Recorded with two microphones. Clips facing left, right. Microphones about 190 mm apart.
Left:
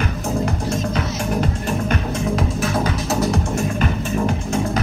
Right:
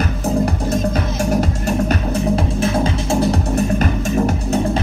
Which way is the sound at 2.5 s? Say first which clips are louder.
Right 3 dB; 30° right (ahead or behind).